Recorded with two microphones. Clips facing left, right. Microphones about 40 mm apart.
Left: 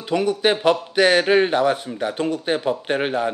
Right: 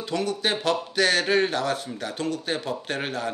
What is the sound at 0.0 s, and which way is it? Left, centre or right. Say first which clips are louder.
Speech: left 7 dB; centre.